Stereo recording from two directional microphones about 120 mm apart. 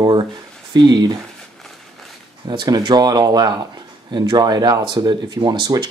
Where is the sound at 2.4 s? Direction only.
35° right (ahead or behind).